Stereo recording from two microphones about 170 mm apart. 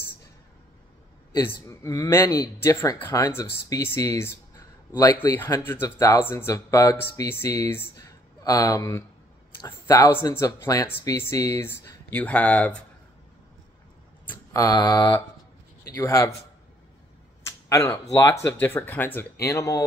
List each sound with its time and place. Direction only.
1.7 s speech: 20° left (ahead or behind)
14.5 s speech: 20° left (ahead or behind)
17.5 s a sound: 15° left (ahead or behind)
18.6 s speech: 15° left (ahead or behind)